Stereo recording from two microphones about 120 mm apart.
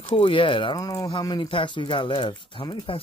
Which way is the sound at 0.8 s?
30° left (ahead or behind).